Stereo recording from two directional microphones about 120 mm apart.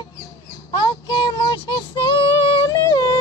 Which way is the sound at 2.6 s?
35° left (ahead or behind).